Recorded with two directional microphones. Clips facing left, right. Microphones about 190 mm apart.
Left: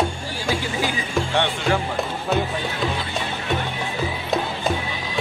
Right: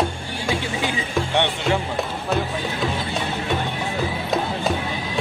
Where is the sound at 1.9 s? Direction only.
Centre (ahead or behind).